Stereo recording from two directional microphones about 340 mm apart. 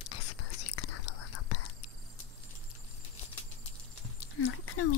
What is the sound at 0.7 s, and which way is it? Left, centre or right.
Whispering, left.